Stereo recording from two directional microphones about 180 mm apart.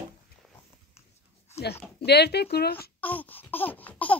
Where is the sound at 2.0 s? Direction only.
65° left (ahead or behind).